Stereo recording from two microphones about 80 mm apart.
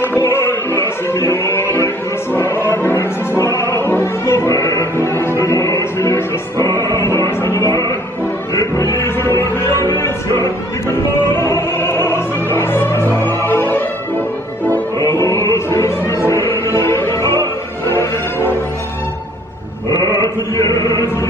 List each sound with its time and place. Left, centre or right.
0.0 s music: left
15.0 s music: left
20.5 s chant: left